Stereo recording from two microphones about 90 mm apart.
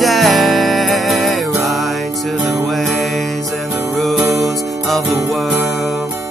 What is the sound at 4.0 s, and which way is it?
Music, centre (ahead or behind).